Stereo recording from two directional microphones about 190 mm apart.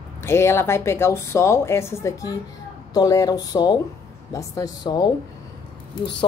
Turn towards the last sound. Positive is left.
turn(degrees=25)  # may be behind; listen again after turning